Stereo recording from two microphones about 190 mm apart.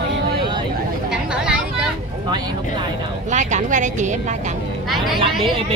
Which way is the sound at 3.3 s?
40° right (ahead or behind).